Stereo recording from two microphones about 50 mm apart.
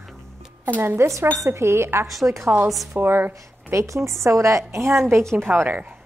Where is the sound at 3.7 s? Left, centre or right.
Right.